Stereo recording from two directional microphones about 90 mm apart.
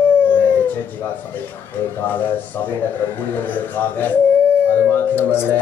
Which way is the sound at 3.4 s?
20° left (ahead or behind).